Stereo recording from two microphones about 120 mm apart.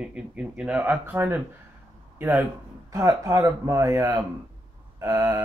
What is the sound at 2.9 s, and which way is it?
Speech, 30° right (ahead or behind).